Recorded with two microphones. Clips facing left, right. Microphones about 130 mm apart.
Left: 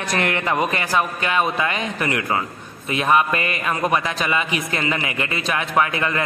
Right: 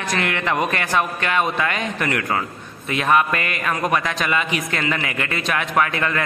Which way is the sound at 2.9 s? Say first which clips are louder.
Even; 20° left (ahead or behind).